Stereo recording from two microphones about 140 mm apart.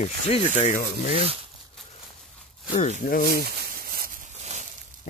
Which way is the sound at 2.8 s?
75° left (ahead or behind).